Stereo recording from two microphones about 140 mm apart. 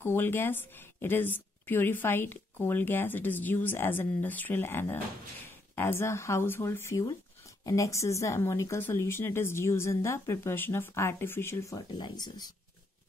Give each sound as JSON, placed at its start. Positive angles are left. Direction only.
{"t": 0.0, "sound": "a woman's voice", "side_deg": 15}